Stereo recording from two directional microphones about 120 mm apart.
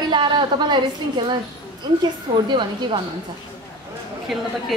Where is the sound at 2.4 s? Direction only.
40° right (ahead or behind).